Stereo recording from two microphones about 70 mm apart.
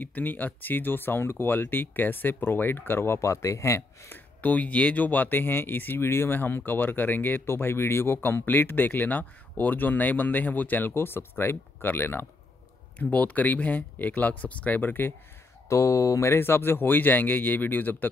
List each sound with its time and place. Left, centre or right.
0.0 s speech: left
4.4 s speech: left
15.7 s speech: left